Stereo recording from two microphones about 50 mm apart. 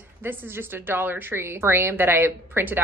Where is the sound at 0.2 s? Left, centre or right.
Right.